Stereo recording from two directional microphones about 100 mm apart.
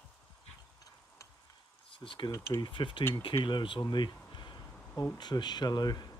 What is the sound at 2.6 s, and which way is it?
Speech, 55° left (ahead or behind).